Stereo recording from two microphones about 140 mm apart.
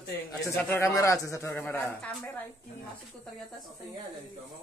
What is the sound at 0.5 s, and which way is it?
Speech, 15° left (ahead or behind).